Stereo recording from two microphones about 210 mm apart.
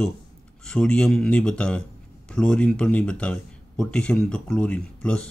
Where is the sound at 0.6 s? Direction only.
5° left (ahead or behind).